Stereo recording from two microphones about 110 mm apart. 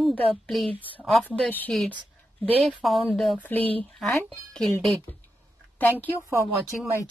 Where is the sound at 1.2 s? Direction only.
15° left (ahead or behind).